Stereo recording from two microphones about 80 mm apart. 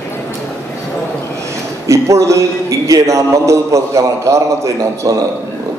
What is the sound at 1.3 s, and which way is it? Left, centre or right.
A man's voice, right.